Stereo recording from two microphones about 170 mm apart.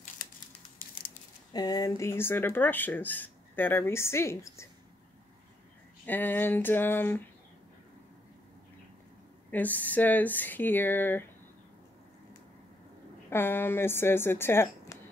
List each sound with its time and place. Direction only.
0.7 s a sound: 60° left (ahead or behind)
1.5 s speech: 25° left (ahead or behind)
6.0 s speech: 10° left (ahead or behind)
9.5 s speech: 10° left (ahead or behind)
13.3 s speech: 15° left (ahead or behind)